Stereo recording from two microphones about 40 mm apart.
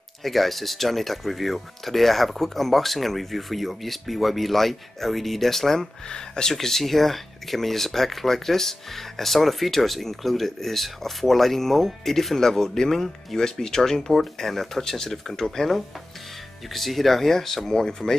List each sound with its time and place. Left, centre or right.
0.2 s speech: centre
6.0 s speech: centre
6.5 s speech: centre